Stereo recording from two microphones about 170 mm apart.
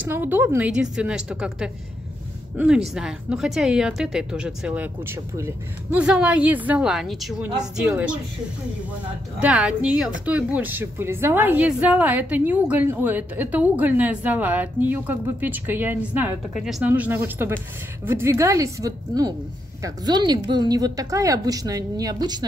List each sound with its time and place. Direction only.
0.0 s a woman's voice: 10° right (ahead or behind)
9.4 s a woman's voice: 5° right (ahead or behind); by 22.5 s 25° right (ahead or behind)